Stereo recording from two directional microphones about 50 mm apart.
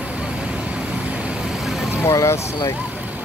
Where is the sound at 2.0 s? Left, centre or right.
Left.